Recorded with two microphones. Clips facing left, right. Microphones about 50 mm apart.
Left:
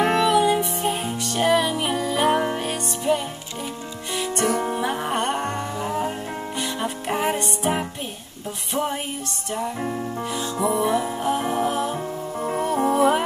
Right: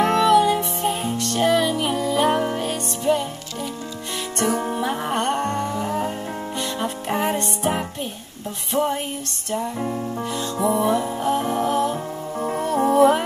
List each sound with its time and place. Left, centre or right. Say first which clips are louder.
0.0 s music: right 2 dB; centre
4.6 s music: even; centre